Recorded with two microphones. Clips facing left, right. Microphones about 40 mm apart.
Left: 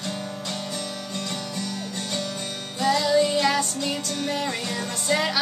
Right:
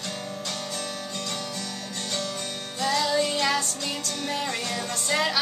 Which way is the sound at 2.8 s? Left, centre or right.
Centre.